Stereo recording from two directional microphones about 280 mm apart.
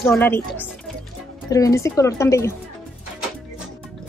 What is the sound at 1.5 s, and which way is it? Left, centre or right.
A woman's voice, centre.